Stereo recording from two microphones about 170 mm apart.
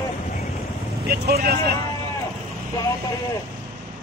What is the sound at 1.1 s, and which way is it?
Speech, 65° right (ahead or behind).